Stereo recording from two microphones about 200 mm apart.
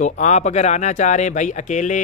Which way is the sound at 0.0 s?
35° left (ahead or behind).